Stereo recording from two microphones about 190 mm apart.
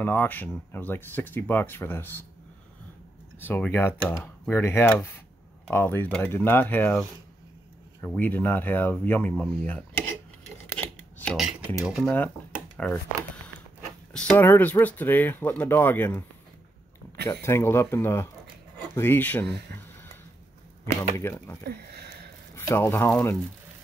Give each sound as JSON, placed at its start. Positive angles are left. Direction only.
{"t": 0.0, "sound": "speech", "side_deg": 10}
{"t": 3.3, "sound": "speech", "side_deg": 10}
{"t": 8.1, "sound": "speech", "side_deg": 10}
{"t": 10.8, "sound": "typewriter", "side_deg": 5}
{"t": 12.7, "sound": "speech", "side_deg": 5}
{"t": 14.1, "sound": "speech", "side_deg": 10}
{"t": 17.3, "sound": "speech", "side_deg": 15}
{"t": 21.2, "sound": "speech", "side_deg": 15}
{"t": 21.6, "sound": "speech", "side_deg": -60}
{"t": 22.6, "sound": "speech", "side_deg": 10}